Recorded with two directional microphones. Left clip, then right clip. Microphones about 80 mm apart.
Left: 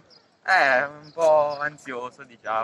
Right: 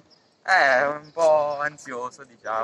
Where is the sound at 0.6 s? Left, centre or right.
Right.